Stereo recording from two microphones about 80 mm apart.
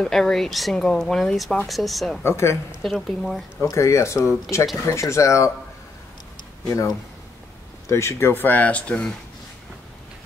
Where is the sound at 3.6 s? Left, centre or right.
Left.